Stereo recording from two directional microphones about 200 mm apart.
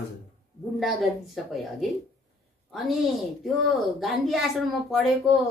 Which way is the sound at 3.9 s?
Centre (ahead or behind).